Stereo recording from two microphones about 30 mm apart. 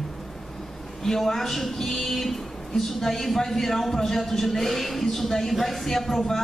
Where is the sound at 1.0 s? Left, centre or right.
Centre.